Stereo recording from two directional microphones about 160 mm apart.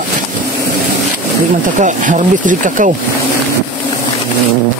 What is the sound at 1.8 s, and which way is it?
Speech, 50° right (ahead or behind).